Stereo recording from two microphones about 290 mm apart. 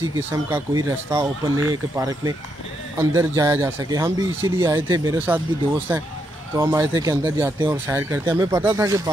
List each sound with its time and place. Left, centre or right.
0.0 s speech: centre